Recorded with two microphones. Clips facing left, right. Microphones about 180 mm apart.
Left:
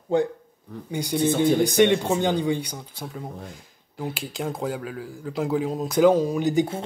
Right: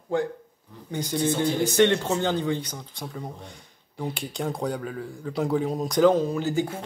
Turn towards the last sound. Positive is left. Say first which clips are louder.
# left 4 dB
turn(degrees=20)  # may be behind; listen again after turning